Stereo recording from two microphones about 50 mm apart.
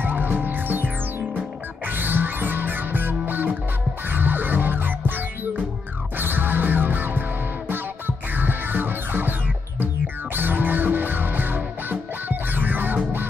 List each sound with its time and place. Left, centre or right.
0.0 s music: right
1.9 s music: right
8.4 s music: right
10.3 s music: right